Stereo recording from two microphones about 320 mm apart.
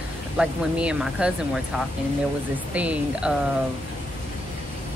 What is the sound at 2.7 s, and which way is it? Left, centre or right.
Speech, centre.